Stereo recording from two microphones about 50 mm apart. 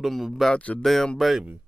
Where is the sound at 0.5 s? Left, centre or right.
Left.